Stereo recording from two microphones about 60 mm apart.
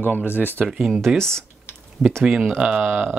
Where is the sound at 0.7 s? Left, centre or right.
Centre.